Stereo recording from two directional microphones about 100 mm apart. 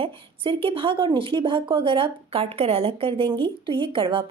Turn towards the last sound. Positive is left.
turn(degrees=-60)  # may be behind; listen again after turning